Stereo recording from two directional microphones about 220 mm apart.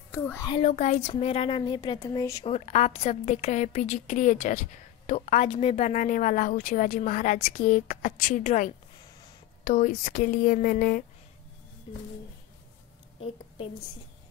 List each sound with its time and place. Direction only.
0.5 s a woman's voice: 25° left (ahead or behind)
2.4 s a woman's voice: 30° left (ahead or behind)